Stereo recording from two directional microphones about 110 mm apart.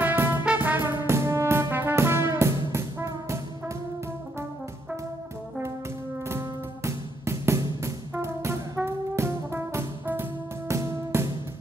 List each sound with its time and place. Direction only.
0.0 s music: 20° right (ahead or behind)
0.5 s brass instrument: 15° right (ahead or behind)
6.2 s music: 25° right (ahead or behind)